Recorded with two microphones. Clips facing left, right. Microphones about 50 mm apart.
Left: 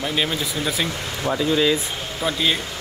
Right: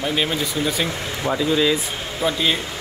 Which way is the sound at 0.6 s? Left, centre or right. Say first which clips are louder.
Right 2 dB; centre.